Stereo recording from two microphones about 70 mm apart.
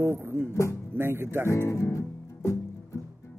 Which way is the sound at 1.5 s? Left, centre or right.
Left.